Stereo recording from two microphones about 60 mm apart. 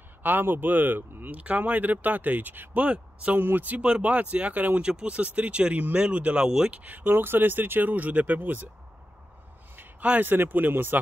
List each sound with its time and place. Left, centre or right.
0.2 s speech: right
3.3 s speech: right; by 6.7 s centre
6.7 s speech: right
10.2 s speech: right